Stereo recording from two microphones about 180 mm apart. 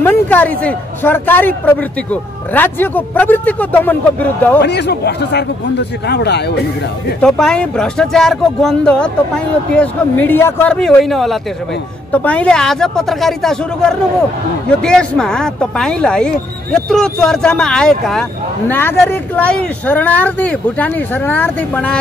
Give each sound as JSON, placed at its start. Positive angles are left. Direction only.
{"t": 0.0, "sound": "a man's voice", "side_deg": 10}
{"t": 4.6, "sound": "speech", "side_deg": 70}
{"t": 7.2, "sound": "a man's voice", "side_deg": 5}